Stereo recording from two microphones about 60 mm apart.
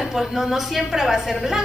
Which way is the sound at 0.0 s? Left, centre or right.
Centre.